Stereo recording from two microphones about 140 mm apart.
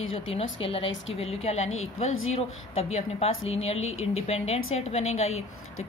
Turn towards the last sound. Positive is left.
turn(degrees=50)  # may be behind; listen again after turning